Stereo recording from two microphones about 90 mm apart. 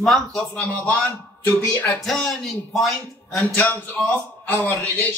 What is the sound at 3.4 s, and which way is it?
A man's voice, 15° left (ahead or behind).